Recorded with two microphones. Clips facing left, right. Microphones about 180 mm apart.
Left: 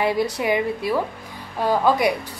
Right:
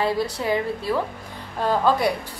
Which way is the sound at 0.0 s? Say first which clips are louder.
Left 2 dB; 15° left (ahead or behind).